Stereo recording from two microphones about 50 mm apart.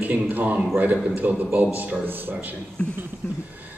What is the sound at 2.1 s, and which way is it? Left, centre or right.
Speech, right.